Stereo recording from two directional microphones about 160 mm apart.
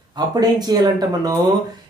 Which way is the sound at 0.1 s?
25° right (ahead or behind).